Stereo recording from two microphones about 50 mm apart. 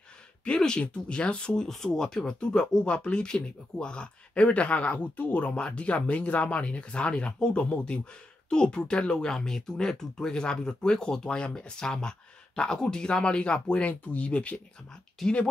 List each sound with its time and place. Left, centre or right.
0.5 s speech: centre; by 5.6 s left
5.6 s speech: left